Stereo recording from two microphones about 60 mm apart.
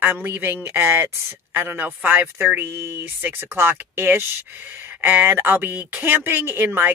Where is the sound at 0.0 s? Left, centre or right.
Right.